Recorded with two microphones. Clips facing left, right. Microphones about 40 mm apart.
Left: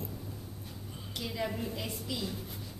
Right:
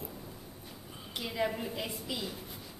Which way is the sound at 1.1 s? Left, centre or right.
Centre.